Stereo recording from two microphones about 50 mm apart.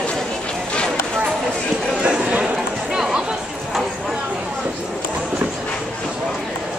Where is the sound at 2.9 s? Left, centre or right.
Centre.